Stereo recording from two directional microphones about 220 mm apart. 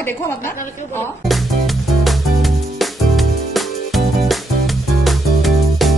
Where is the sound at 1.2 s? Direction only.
Centre (ahead or behind).